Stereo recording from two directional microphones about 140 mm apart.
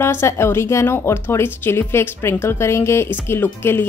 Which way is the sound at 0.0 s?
20° left (ahead or behind).